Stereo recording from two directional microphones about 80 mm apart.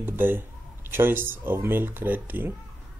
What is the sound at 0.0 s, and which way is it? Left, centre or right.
Speech, right.